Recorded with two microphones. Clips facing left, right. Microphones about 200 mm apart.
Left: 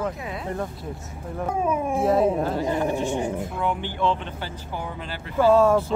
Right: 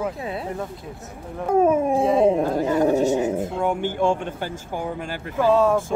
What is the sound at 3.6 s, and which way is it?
Speech, 45° right (ahead or behind).